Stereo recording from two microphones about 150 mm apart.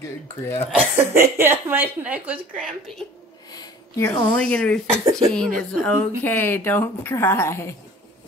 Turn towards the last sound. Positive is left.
turn(degrees=15)  # may be behind; listen again after turning